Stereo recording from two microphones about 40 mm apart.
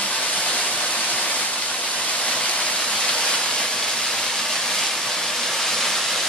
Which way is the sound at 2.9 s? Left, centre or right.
Centre.